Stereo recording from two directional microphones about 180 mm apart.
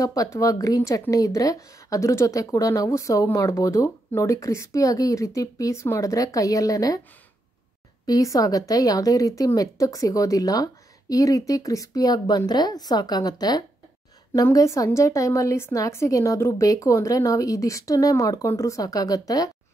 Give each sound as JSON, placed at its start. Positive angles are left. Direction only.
{"t": 0.0, "sound": "speech", "side_deg": 20}
{"t": 8.1, "sound": "a woman's voice", "side_deg": 20}